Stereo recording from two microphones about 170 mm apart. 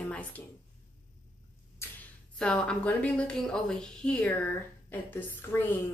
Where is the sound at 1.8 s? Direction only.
15° left (ahead or behind).